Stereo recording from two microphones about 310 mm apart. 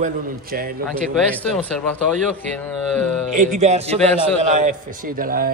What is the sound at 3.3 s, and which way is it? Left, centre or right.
Speech, right.